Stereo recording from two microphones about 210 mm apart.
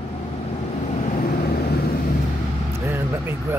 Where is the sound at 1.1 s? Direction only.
45° left (ahead or behind).